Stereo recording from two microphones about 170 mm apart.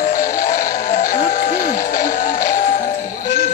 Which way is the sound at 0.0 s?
55° left (ahead or behind).